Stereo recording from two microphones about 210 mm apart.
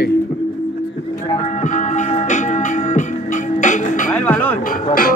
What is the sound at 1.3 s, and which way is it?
Music, 30° left (ahead or behind).